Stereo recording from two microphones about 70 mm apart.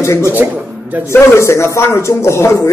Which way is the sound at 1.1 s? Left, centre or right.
Left.